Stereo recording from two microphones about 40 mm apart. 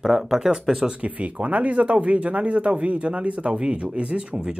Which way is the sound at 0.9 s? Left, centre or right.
Right.